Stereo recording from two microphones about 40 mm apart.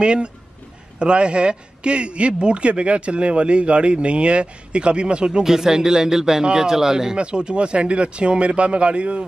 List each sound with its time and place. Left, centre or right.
0.0 s a man's voice: right
5.4 s speech: centre
7.2 s a man's voice: right